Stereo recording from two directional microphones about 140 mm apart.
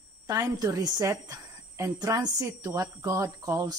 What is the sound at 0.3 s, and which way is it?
A woman's voice, 25° right (ahead or behind).